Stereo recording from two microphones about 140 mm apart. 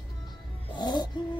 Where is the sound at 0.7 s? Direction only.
30° left (ahead or behind).